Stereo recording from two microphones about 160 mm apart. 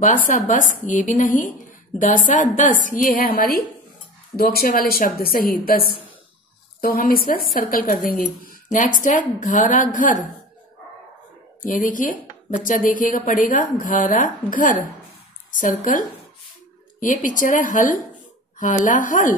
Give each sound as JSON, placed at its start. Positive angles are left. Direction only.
{"t": 0.0, "sound": "a woman's voice", "side_deg": 55}
{"t": 2.5, "sound": "a woman's voice", "side_deg": 55}
{"t": 11.6, "sound": "a woman's voice", "side_deg": 55}